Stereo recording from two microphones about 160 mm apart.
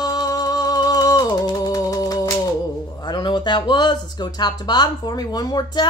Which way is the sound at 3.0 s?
30° left (ahead or behind).